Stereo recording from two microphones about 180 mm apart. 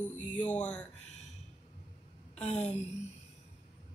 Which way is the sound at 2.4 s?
5° left (ahead or behind).